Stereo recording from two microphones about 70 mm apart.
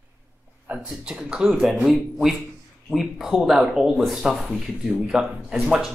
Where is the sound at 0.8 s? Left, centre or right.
Centre.